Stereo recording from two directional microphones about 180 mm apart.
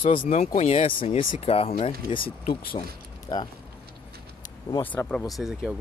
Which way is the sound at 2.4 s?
50° left (ahead or behind).